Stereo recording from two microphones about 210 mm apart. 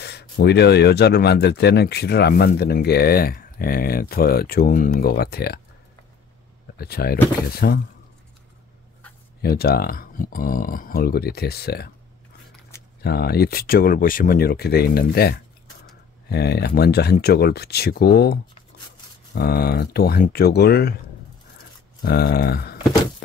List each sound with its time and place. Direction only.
0.0 s speech: 50° left (ahead or behind)
6.8 s speech: 45° left (ahead or behind)
9.4 s speech: 45° left (ahead or behind)
13.0 s speech: 50° left (ahead or behind)
22.0 s speech: 45° left (ahead or behind)